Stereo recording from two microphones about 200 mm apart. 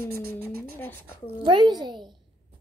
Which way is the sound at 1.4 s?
25° right (ahead or behind).